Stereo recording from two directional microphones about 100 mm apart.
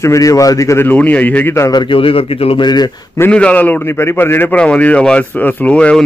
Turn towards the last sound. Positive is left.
turn(degrees=10)  # may be behind; listen again after turning